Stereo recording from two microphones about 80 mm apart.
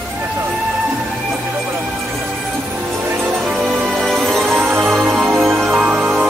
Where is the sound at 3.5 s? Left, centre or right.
Centre.